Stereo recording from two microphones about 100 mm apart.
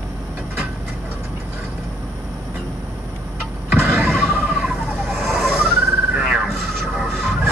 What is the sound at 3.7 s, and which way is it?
Vehicle, 25° right (ahead or behind).